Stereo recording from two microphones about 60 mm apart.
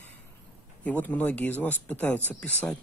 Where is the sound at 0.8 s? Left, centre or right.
Left.